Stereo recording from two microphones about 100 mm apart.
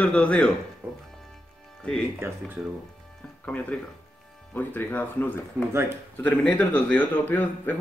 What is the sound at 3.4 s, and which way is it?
A man's voice, 15° left (ahead or behind).